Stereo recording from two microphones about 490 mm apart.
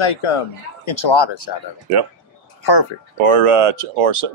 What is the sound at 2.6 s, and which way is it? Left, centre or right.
Speech, left.